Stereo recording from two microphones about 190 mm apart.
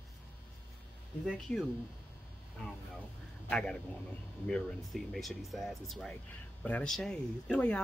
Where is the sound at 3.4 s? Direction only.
5° left (ahead or behind).